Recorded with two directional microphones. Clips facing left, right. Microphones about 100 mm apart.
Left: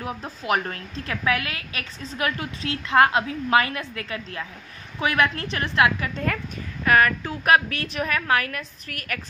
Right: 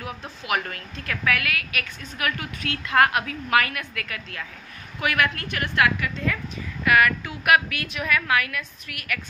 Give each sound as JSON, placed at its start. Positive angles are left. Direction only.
{"t": 0.0, "sound": "a woman's voice", "side_deg": 35}
{"t": 6.1, "sound": "a woman's voice", "side_deg": 50}
{"t": 6.8, "sound": "a woman's voice", "side_deg": 35}